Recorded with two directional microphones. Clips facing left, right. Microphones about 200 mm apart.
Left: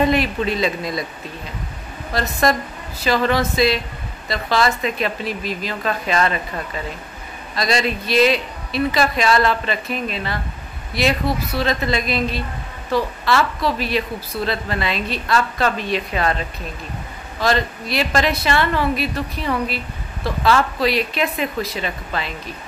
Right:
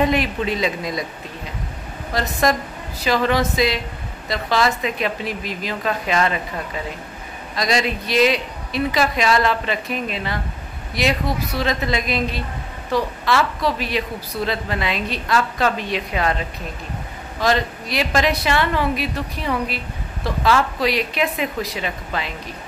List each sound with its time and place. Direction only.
0.0 s a woman's voice: 15° right (ahead or behind)
2.4 s a woman's voice: 15° right (ahead or behind)
7.5 s a woman's voice: 15° right (ahead or behind)